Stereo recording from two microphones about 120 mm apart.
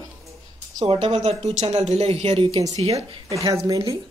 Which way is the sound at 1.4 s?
70° right (ahead or behind).